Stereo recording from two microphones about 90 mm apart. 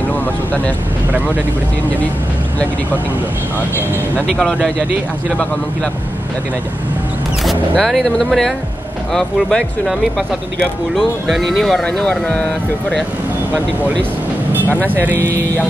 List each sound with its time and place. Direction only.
0.1 s vehicle: 20° left (ahead or behind)
4.3 s speech: 5° left (ahead or behind)
7.4 s speech: centre (ahead or behind)
14.9 s speech: 20° right (ahead or behind)